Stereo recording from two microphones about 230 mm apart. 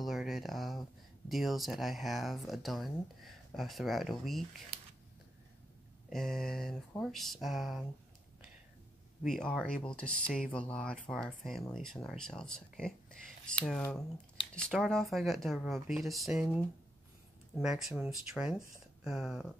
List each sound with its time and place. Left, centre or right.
0.0 s a sound: centre
1.3 s speech: centre
6.0 s speech: centre
9.2 s speech: centre